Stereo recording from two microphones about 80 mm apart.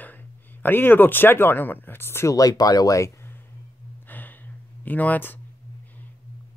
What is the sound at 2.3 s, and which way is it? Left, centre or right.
Speech, left.